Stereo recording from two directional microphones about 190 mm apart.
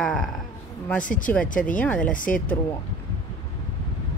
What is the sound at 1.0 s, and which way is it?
Speech, 45° left (ahead or behind).